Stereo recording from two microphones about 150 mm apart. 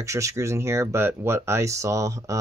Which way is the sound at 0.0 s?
20° right (ahead or behind).